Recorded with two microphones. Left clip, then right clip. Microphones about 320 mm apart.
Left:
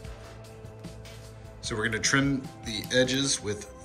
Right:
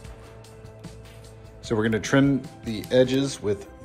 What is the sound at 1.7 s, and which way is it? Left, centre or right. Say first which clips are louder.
Speech: right 3 dB; centre.